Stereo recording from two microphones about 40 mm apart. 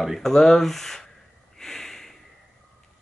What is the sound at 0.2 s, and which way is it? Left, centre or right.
Speech, centre.